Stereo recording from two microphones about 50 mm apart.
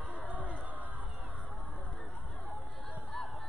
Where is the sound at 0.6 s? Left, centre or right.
Right.